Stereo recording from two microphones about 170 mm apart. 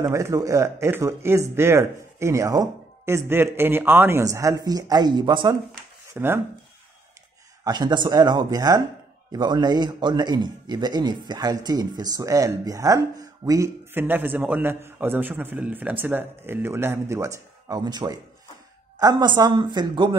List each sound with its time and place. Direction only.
0.0 s speech: 20° right (ahead or behind)
6.1 s speech: 15° right (ahead or behind)
7.6 s a man's voice: 25° right (ahead or behind)